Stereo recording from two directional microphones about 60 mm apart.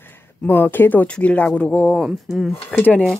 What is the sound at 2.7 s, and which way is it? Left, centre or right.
Speech, left.